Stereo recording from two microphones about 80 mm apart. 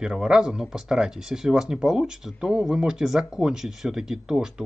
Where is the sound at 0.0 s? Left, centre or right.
Centre.